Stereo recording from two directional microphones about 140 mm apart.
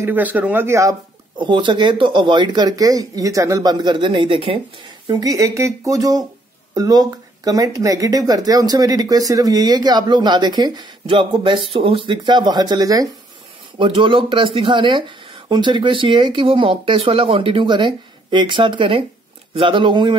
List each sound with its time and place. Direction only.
0.0 s speech: 10° right (ahead or behind)
1.4 s speech: 35° right (ahead or behind)
5.0 s speech: 25° right (ahead or behind)